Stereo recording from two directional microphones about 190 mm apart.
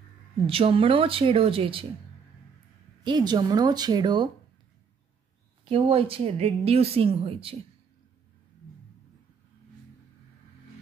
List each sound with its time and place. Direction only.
0.5 s speech: 30° right (ahead or behind)
3.0 s speech: 25° right (ahead or behind)
5.7 s speech: 30° right (ahead or behind)